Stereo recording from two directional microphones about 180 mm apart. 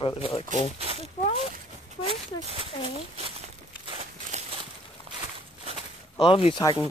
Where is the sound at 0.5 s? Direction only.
35° right (ahead or behind).